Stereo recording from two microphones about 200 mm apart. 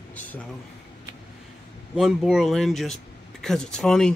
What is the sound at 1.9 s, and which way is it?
Speech, 5° right (ahead or behind).